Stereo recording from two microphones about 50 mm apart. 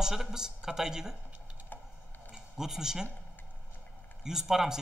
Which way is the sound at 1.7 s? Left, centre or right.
Left.